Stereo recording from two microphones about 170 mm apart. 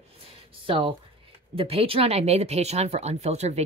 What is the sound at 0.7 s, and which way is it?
Speech, 30° right (ahead or behind).